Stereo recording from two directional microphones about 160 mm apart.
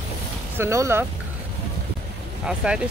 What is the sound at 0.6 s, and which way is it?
Speech, 15° right (ahead or behind).